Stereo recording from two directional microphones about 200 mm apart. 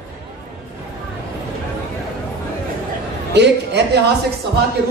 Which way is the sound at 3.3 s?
55° right (ahead or behind).